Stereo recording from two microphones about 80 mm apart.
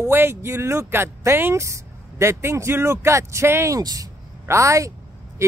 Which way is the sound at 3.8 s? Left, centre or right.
Right.